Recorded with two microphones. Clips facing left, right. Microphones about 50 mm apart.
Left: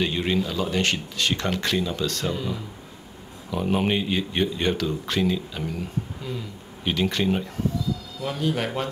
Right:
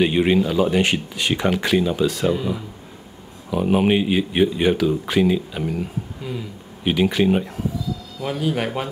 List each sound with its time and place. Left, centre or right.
0.0 s speech: right